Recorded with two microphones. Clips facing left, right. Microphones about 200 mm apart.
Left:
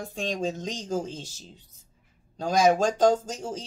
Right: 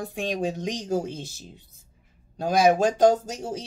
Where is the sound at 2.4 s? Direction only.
10° right (ahead or behind).